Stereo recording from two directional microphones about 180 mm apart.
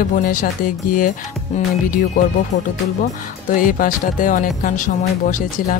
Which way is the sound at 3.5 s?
50° left (ahead or behind).